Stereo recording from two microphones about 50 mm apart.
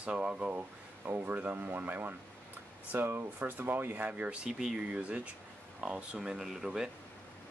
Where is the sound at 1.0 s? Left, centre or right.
Right.